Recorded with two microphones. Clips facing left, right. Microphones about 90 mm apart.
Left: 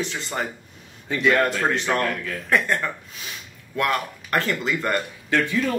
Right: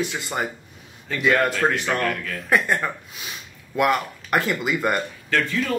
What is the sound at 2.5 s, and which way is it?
Speech, 15° right (ahead or behind).